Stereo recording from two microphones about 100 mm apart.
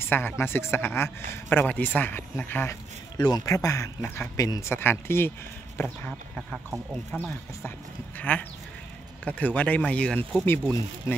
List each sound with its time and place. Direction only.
0.0 s a man's voice: 20° left (ahead or behind)
3.2 s a man's voice: 45° left (ahead or behind); by 5.9 s 25° left (ahead or behind)
6.9 s speech: 5° left (ahead or behind)
8.2 s a man's voice: 15° left (ahead or behind)